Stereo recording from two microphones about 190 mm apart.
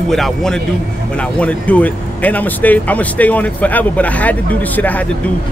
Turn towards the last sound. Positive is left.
turn(degrees=10)  # may be behind; listen again after turning